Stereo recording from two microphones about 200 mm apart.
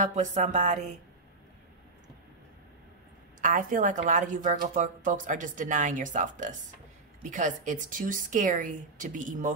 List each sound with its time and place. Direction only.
0.0 s a woman's voice: 35° right (ahead or behind)
3.3 s a woman's voice: 40° right (ahead or behind)